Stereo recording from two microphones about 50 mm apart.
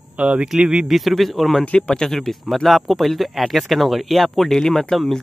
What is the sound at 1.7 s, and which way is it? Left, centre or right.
Speech, centre.